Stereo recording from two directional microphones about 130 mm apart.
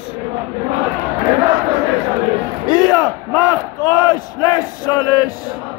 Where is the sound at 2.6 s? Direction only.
30° left (ahead or behind).